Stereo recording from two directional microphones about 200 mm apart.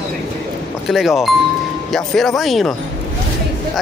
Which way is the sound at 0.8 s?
Centre (ahead or behind).